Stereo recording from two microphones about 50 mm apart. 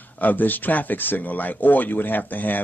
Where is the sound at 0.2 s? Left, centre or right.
Left.